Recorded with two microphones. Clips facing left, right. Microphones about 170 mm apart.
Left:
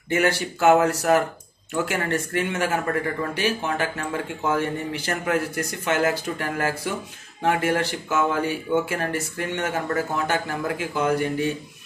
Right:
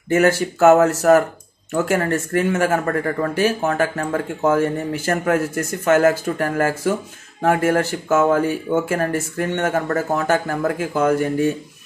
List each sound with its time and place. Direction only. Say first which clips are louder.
0.1 s speech: right 6 dB; 45° right (ahead or behind)